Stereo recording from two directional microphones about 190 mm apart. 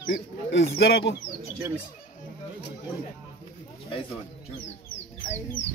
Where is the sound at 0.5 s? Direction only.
65° left (ahead or behind).